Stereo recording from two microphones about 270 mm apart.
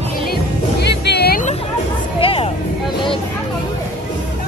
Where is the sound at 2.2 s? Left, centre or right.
Centre.